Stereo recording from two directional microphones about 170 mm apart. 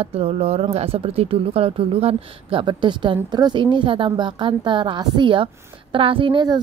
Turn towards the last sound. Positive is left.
turn(degrees=-30)  # may be behind; listen again after turning